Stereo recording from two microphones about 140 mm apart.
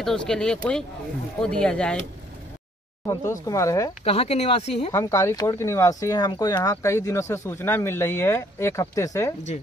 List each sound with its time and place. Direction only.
0.0 s speech: 5° left (ahead or behind)
3.1 s speech: 25° left (ahead or behind)
4.0 s speech: 45° left (ahead or behind)
4.9 s speech: 20° left (ahead or behind)